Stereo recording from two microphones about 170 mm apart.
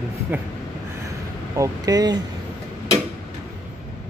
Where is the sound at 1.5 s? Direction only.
20° right (ahead or behind).